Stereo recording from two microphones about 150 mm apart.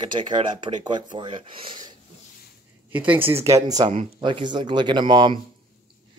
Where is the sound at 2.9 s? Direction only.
10° right (ahead or behind).